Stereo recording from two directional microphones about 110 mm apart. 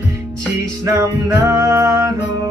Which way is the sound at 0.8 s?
30° right (ahead or behind).